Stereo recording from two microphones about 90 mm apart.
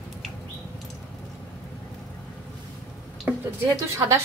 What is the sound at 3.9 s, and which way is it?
Speech, 35° right (ahead or behind).